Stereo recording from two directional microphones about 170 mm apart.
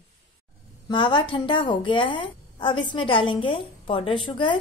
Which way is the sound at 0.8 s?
30° left (ahead or behind).